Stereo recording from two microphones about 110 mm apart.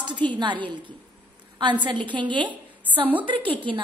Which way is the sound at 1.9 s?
45° right (ahead or behind).